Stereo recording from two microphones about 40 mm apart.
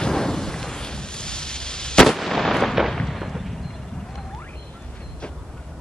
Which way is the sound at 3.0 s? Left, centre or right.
Centre.